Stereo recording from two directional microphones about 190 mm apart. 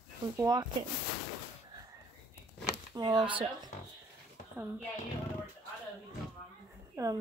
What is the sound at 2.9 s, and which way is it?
Speech, 20° right (ahead or behind).